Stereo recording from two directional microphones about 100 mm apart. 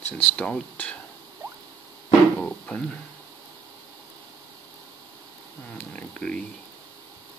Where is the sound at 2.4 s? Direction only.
10° left (ahead or behind).